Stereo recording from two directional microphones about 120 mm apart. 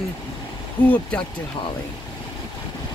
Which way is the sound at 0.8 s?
10° left (ahead or behind).